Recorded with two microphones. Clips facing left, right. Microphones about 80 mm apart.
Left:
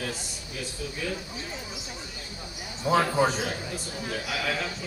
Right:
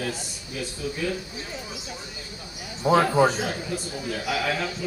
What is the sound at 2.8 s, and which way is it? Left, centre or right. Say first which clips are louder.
Speech: right 4 dB; centre.